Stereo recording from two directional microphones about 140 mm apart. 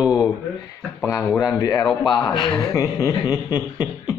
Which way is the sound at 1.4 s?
25° left (ahead or behind).